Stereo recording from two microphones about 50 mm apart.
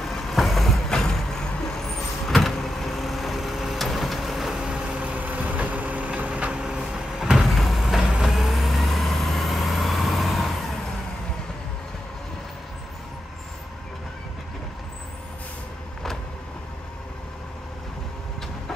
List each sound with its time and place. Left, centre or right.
0.0 s vehicle: centre
4.6 s vehicle: centre
4.9 s vehicle: right; by 10.5 s centre